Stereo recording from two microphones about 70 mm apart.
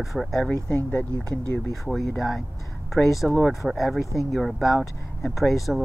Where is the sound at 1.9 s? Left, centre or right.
Centre.